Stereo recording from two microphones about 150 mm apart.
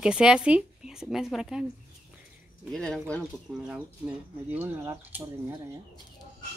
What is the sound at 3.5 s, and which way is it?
Speech, 10° right (ahead or behind).